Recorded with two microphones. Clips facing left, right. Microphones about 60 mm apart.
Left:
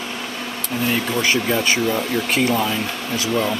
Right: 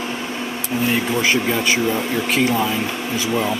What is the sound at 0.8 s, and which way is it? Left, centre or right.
Speech, centre.